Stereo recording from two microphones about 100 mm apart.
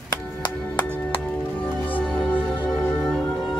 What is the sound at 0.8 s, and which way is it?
Music, 15° left (ahead or behind).